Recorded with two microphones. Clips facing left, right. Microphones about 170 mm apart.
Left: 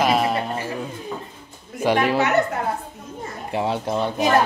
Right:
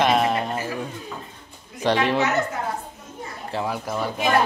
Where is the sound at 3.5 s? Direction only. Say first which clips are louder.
Left 4 dB; 20° left (ahead or behind).